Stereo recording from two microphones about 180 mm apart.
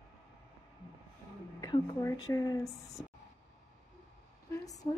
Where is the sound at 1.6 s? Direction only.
20° left (ahead or behind).